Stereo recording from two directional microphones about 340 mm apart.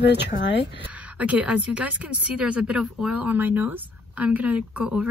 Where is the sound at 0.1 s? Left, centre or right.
Left.